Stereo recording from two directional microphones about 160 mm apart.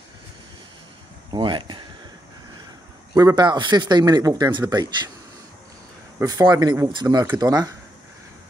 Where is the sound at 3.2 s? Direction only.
25° right (ahead or behind).